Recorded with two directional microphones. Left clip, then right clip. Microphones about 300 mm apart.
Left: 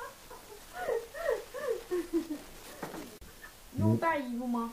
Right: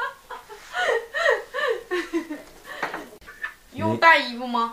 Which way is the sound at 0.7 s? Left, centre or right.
Centre.